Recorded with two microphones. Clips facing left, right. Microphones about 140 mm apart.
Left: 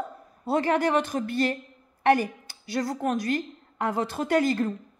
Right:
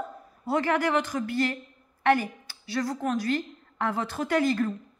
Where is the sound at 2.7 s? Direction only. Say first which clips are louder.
Left 1 dB; 20° left (ahead or behind).